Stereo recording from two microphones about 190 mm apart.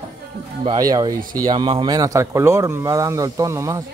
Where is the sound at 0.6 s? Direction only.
20° right (ahead or behind).